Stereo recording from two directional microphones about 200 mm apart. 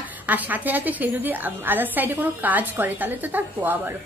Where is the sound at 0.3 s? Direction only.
10° right (ahead or behind).